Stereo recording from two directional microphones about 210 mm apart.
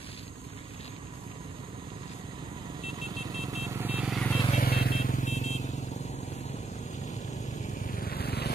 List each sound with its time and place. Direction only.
3.6 s vehicle: 10° right (ahead or behind)
4.4 s vehicle: 30° left (ahead or behind)
4.6 s vehicle: 45° left (ahead or behind)
7.1 s vehicle: 35° left (ahead or behind)